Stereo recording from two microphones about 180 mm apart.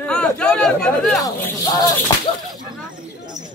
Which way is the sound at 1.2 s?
20° left (ahead or behind).